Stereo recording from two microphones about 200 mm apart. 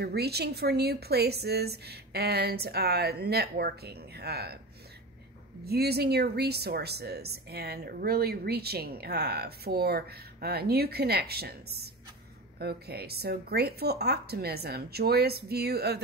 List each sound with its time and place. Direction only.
0.0 s a woman's voice: 55° right (ahead or behind)
5.7 s a woman's voice: 55° right (ahead or behind)